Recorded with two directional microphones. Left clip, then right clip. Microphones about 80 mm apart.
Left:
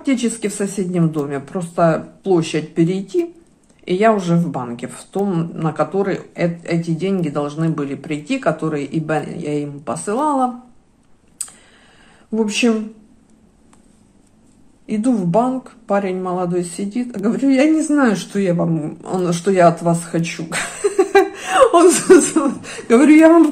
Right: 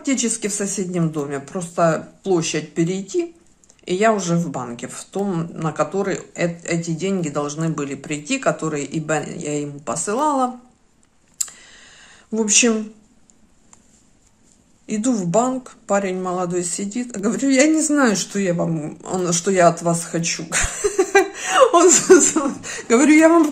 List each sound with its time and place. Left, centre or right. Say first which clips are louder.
0.0 s a woman's voice: left 2 dB; right
11.3 s computer keyboard: right 5 dB; right
14.9 s a woman's voice: left 3 dB; right